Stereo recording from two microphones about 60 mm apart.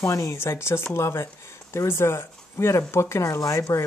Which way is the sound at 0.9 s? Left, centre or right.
Left.